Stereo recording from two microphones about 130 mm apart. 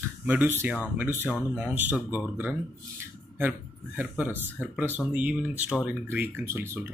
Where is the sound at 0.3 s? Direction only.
15° right (ahead or behind).